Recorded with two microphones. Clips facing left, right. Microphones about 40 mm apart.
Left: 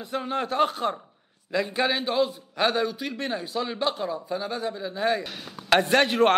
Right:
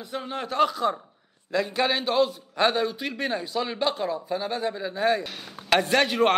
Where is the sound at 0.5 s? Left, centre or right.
Left.